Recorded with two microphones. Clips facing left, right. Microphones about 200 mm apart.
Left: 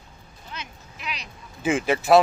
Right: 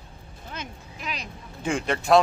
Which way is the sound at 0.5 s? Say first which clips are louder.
Right 2 dB; 45° right (ahead or behind).